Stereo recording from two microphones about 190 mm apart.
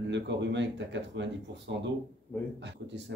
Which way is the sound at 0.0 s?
70° right (ahead or behind).